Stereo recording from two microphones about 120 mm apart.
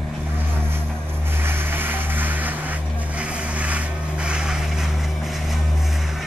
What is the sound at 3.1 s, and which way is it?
Vehicle, 10° right (ahead or behind).